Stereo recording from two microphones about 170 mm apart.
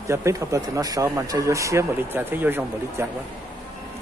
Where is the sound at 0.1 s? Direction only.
15° right (ahead or behind).